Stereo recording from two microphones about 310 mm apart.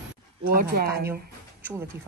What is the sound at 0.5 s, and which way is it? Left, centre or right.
Speech, right.